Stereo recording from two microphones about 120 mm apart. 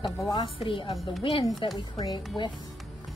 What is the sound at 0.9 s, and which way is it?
Speech, centre (ahead or behind).